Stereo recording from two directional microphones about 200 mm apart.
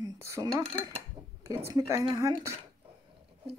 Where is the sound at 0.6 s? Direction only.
30° right (ahead or behind).